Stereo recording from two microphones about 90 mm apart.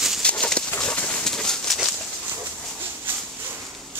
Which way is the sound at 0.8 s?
15° left (ahead or behind).